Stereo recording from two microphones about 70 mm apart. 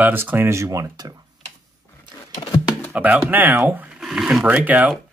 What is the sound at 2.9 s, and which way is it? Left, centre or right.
Speech, right.